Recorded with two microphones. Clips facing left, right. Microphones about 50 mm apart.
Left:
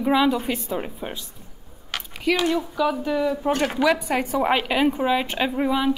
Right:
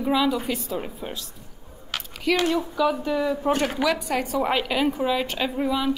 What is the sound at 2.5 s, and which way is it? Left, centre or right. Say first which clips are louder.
Speech: even; centre.